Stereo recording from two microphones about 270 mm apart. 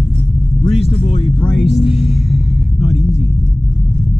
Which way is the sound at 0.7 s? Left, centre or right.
Left.